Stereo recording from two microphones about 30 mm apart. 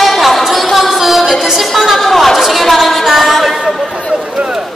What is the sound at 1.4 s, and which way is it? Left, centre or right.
Chatter, centre.